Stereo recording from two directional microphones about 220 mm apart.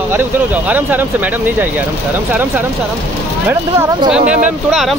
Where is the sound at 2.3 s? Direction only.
10° right (ahead or behind).